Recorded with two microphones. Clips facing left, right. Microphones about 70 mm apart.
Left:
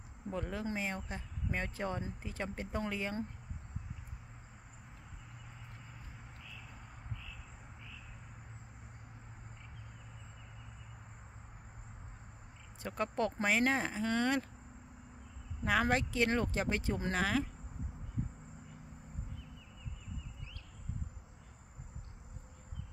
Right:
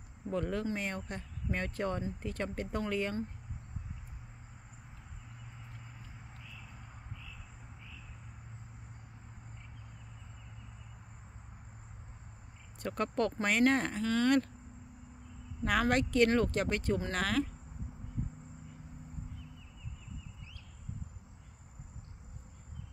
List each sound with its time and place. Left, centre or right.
0.3 s speech: centre
12.8 s speech: centre
15.6 s speech: centre